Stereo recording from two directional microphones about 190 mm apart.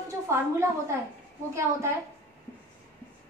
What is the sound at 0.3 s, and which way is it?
Speech, 15° right (ahead or behind).